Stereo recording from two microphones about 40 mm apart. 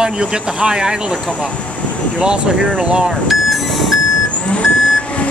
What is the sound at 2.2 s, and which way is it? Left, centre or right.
Speech, right.